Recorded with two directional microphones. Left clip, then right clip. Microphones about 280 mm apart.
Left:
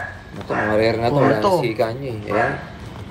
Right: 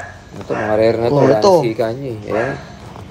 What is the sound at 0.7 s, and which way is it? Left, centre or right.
Speech, right.